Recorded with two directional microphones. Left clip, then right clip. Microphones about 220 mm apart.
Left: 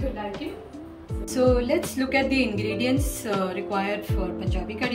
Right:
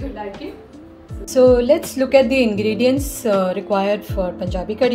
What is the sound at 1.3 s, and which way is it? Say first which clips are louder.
Speech: right 10 dB; 30° right (ahead or behind).